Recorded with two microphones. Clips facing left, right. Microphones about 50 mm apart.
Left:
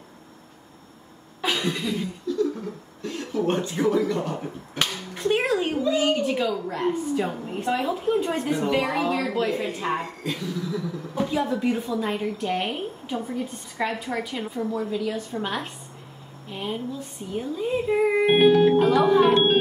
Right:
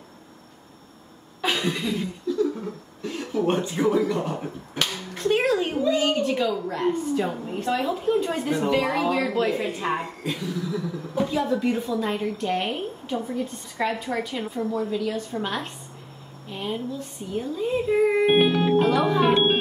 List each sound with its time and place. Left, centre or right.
1.4 s laughter: centre
3.0 s a sound: centre
3.5 s speech: centre
4.7 s a sound: centre
5.9 s a woman's voice: centre
7.6 s a woman's voice: centre
9.1 s speech: centre
11.1 s a woman's voice: centre
16.4 s a sound: centre
17.4 s a woman's voice: centre
18.7 s music: centre